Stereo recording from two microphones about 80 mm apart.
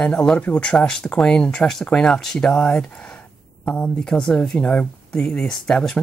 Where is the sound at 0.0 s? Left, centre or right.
Centre.